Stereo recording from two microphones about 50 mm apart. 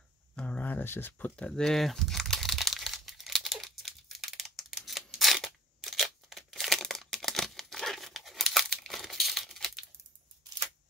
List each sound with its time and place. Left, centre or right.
0.6 s a sound: left
0.8 s speech: left
1.5 s crumpling: centre